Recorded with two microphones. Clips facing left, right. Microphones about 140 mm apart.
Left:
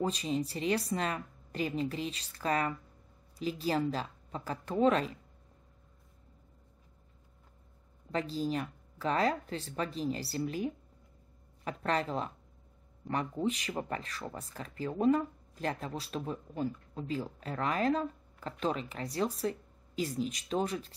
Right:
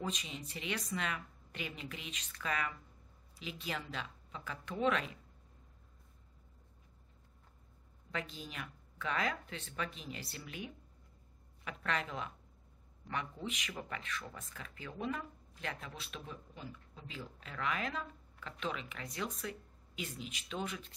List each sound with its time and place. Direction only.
0.0 s speech: 35° left (ahead or behind)
8.1 s speech: 35° left (ahead or behind)